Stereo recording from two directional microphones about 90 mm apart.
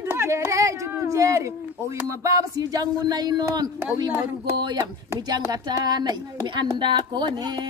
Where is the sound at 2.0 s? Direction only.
40° right (ahead or behind).